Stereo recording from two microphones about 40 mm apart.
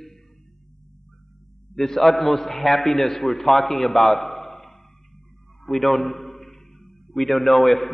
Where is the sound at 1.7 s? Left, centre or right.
Centre.